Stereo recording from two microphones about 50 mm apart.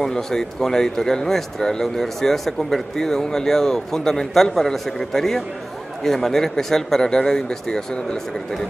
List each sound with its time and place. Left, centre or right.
0.0 s speech: centre